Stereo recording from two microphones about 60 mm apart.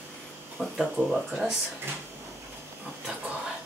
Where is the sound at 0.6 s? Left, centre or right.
Right.